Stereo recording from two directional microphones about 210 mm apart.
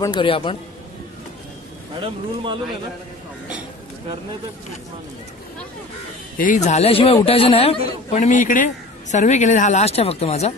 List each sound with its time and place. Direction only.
0.0 s a man's voice: 20° left (ahead or behind)
2.0 s speech: 25° right (ahead or behind)
6.3 s a man's voice: 40° left (ahead or behind)